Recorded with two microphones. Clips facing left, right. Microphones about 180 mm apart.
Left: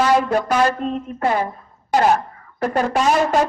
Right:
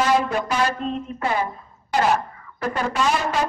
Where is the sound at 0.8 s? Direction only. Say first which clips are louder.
Left 3 dB; 50° left (ahead or behind).